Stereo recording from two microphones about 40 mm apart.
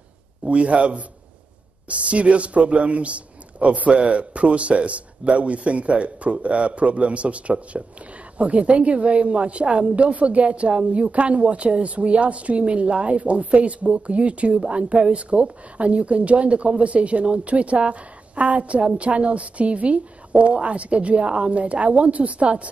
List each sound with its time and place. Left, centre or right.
0.5 s speech: right